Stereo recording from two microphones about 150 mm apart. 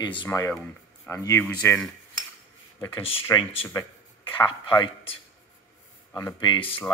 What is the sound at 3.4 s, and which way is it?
Speech, 40° left (ahead or behind).